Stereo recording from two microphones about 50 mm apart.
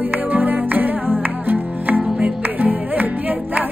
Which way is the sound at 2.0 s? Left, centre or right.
Centre.